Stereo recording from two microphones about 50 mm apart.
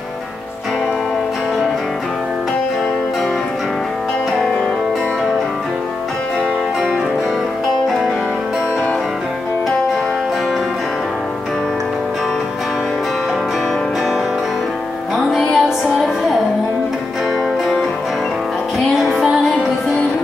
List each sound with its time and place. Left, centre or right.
15.1 s music: centre
18.9 s music: centre
19.3 s music: centre